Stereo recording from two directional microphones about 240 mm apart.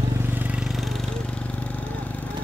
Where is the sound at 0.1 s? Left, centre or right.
Centre.